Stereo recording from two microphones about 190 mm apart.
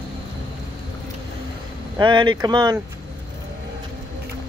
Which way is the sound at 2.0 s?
25° right (ahead or behind).